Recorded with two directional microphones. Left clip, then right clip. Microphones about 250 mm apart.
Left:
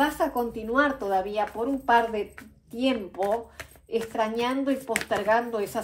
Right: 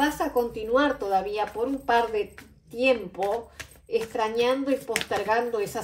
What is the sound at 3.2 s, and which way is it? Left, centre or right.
Speech, centre.